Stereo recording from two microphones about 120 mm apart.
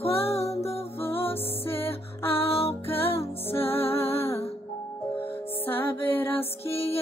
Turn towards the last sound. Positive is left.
turn(degrees=55)  # may be behind; listen again after turning